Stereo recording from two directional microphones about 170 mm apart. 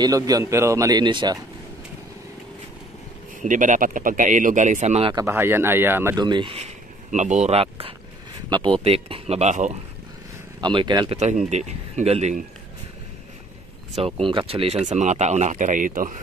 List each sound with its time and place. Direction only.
0.0 s speech: 20° right (ahead or behind)
3.4 s speech: 50° right (ahead or behind)
5.1 s speech: 15° right (ahead or behind)
6.1 s speech: 25° right (ahead or behind)
8.5 s speech: 25° right (ahead or behind)
8.8 s speech: 35° right (ahead or behind)
10.6 s speech: 25° right (ahead or behind)
11.1 s speech: 45° right (ahead or behind)
13.9 s speech: 35° right (ahead or behind); by 16.2 s 50° right (ahead or behind)